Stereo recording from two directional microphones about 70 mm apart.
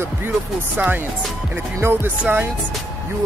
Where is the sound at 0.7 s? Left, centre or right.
Right.